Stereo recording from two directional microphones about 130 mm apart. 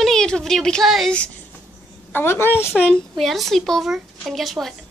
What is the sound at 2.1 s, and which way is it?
Speech, 15° left (ahead or behind).